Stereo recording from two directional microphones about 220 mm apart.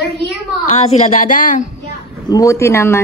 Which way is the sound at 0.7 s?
30° left (ahead or behind).